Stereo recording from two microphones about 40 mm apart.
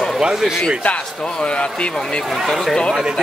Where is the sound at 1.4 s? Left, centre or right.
Left.